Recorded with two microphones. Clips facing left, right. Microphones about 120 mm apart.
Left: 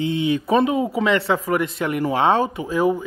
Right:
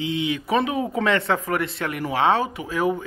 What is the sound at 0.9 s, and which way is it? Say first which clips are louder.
Speech: left 2 dB; 5° left (ahead or behind).